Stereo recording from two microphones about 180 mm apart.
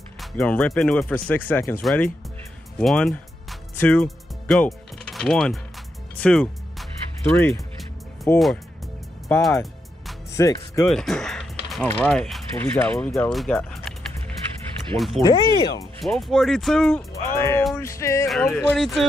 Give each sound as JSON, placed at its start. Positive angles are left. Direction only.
{"t": 0.2, "sound": "speech", "side_deg": 5}
{"t": 6.1, "sound": "music", "side_deg": 5}
{"t": 8.3, "sound": "speech", "side_deg": 10}
{"t": 9.3, "sound": "music", "side_deg": 0}
{"t": 10.3, "sound": "speech", "side_deg": 15}
{"t": 10.9, "sound": "speech", "side_deg": 0}
{"t": 15.2, "sound": "speech", "side_deg": 20}
{"t": 16.2, "sound": "speech", "side_deg": 0}
{"t": 17.4, "sound": "speech", "side_deg": 15}
{"t": 18.3, "sound": "speech", "side_deg": 0}